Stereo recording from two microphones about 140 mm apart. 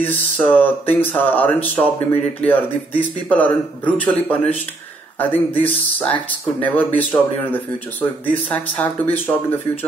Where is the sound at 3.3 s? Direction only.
10° left (ahead or behind).